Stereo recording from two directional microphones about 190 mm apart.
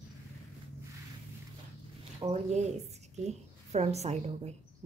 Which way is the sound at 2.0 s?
30° right (ahead or behind).